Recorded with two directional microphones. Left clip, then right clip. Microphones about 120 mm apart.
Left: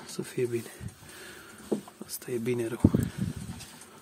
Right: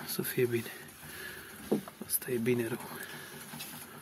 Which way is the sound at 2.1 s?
30° left (ahead or behind).